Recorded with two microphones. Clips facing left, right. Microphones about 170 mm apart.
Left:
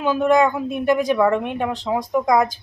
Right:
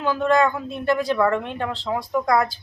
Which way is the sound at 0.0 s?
15° left (ahead or behind).